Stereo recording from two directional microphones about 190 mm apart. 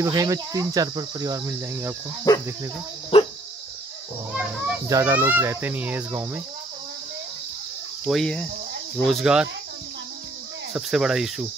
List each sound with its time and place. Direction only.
0.0 s cricket: 15° right (ahead or behind)
2.3 s speech: 15° left (ahead or behind)
3.1 s dog: 30° left (ahead or behind)
4.3 s a child's voice: 5° right (ahead or behind)
4.8 s cricket: 15° right (ahead or behind)
8.1 s speech: 5° left (ahead or behind)
10.7 s speech: centre (ahead or behind)